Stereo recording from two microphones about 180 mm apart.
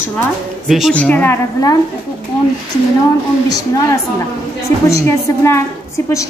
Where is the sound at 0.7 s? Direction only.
Centre (ahead or behind); by 1.8 s 15° left (ahead or behind).